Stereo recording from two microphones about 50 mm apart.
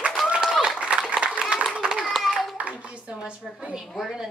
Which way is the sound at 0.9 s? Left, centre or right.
Right.